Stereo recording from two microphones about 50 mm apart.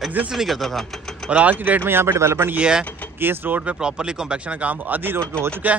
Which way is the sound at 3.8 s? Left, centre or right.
Centre.